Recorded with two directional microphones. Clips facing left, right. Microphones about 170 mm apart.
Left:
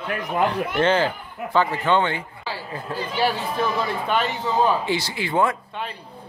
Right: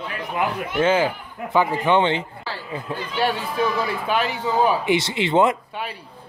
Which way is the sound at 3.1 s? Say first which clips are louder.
Right 1 dB; centre (ahead or behind).